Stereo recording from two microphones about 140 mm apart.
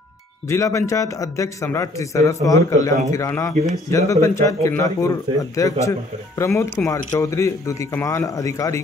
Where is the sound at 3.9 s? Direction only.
20° left (ahead or behind).